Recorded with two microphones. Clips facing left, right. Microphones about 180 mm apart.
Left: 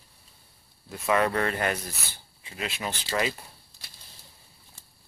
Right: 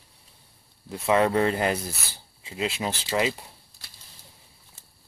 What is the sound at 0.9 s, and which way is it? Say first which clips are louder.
Speech: right 3 dB; 25° right (ahead or behind).